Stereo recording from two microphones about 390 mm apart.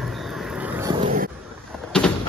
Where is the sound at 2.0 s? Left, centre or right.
Centre.